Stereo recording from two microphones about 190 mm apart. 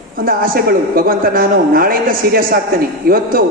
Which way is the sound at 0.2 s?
50° right (ahead or behind).